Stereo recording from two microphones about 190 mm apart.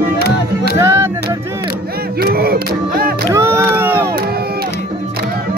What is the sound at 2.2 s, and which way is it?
Music, 55° right (ahead or behind).